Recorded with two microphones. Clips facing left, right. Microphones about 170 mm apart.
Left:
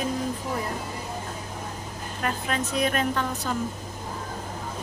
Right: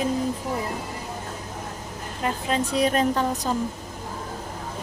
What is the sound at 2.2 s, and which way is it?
Speech, 30° right (ahead or behind).